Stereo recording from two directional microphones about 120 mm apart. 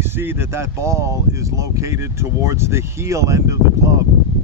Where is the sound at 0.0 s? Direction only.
20° right (ahead or behind).